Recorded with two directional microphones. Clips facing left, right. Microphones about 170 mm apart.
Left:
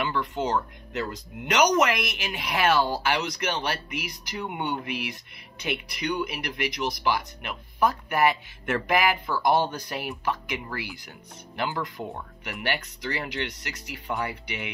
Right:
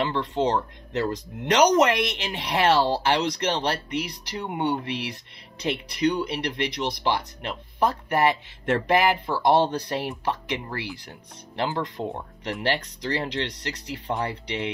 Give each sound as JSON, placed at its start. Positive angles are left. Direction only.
{"t": 0.0, "sound": "speech", "side_deg": -30}